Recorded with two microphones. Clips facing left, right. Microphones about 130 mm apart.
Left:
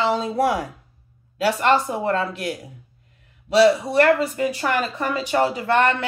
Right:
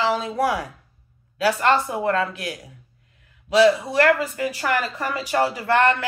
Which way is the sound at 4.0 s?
25° left (ahead or behind).